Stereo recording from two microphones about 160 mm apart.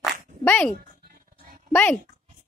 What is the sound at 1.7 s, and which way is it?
Speech, 10° left (ahead or behind).